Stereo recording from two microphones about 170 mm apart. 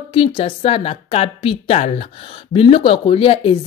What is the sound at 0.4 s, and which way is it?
Speech, 35° left (ahead or behind).